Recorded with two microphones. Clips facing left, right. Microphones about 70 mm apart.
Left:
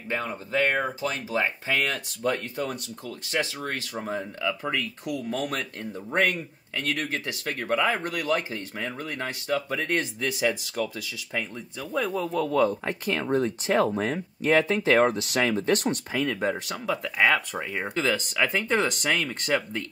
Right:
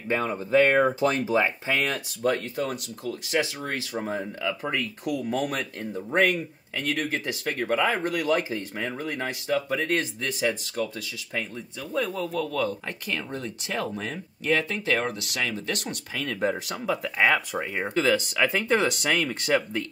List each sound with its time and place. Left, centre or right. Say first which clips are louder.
0.5 s speech: right 6 dB; right
2.3 s speech: right 2 dB; centre
6.8 s speech: right 1 dB; centre
8.3 s speech: right 2 dB; centre
12.1 s speech: left 3 dB; centre
13.1 s speech: left 8 dB; left
16.1 s speech: left 3 dB; centre
16.4 s speech: right 1 dB; centre